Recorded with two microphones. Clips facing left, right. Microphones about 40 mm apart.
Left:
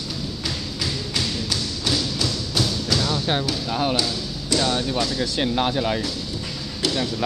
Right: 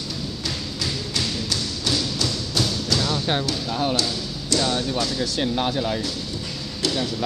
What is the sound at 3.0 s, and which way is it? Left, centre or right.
Music, centre.